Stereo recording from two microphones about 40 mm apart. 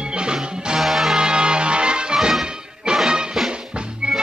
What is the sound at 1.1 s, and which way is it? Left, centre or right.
Music, right.